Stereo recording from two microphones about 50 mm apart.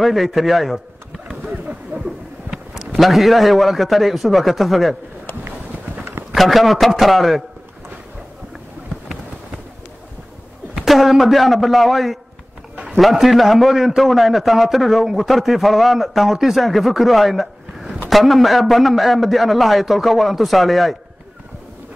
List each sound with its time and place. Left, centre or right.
0.0 s pigeon: centre
1.4 s a sound: right
2.0 s a sound: centre
2.9 s a man's voice: centre
6.3 s a man's voice: centre
10.7 s a man's voice: centre